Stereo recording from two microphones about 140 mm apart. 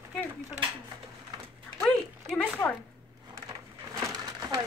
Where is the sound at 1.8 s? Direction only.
5° left (ahead or behind).